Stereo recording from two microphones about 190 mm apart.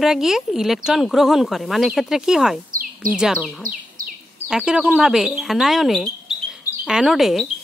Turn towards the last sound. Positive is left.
turn(degrees=0)  # may be behind; listen again after turning